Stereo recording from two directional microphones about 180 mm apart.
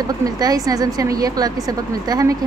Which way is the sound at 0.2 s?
20° right (ahead or behind).